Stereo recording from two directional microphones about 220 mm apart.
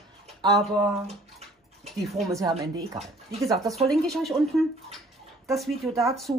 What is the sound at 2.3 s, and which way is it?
Speech, 15° right (ahead or behind).